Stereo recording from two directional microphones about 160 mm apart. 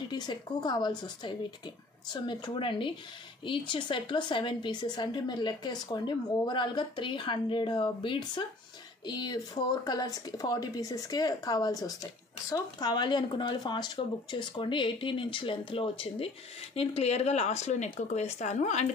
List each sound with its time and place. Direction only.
0.1 s speech: 25° left (ahead or behind); by 18.9 s 45° left (ahead or behind)